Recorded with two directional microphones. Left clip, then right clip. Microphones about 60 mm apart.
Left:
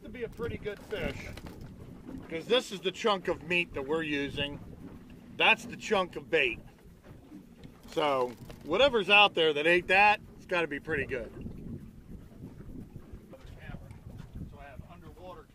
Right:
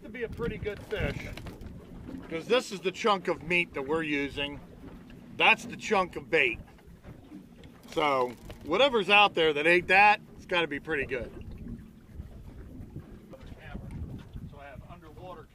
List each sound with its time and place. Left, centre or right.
0.0 s a sound: centre
0.5 s speech: centre
1.3 s speech: left
2.1 s speech: centre
7.9 s speech: centre
13.7 s boat: left